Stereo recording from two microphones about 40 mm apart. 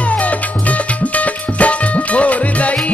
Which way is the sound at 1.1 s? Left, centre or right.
Left.